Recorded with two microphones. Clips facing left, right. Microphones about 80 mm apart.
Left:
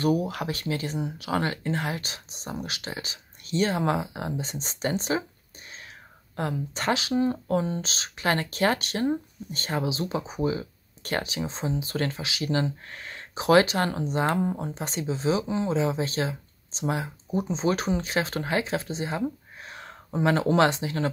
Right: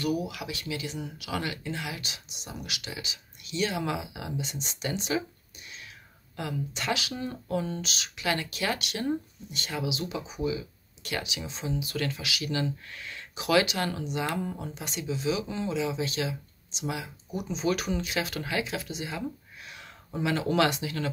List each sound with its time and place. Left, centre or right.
0.0 s speech: left
6.3 s speech: left